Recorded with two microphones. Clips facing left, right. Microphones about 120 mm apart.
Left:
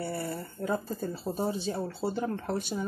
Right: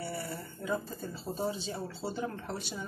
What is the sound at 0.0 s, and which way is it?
Speech, 50° left (ahead or behind).